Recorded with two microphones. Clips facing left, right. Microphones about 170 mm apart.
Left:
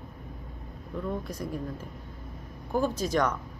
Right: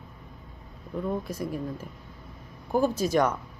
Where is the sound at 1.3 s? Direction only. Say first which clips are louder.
Right 3 dB; 5° right (ahead or behind).